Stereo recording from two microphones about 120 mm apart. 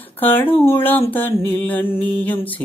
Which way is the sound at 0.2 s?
15° left (ahead or behind).